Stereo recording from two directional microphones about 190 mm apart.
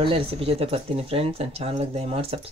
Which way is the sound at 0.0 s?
30° right (ahead or behind).